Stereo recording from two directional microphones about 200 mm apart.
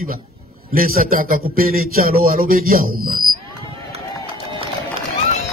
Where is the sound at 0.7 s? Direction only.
45° right (ahead or behind).